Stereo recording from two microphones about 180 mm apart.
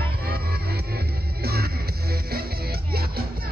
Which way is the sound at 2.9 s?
60° right (ahead or behind).